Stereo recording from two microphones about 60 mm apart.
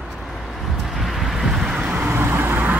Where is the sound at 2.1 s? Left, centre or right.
Right.